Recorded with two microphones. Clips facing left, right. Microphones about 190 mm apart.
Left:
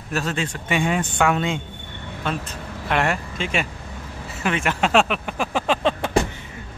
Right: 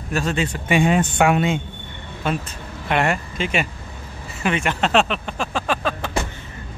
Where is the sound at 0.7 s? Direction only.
20° right (ahead or behind); by 5.9 s 20° left (ahead or behind).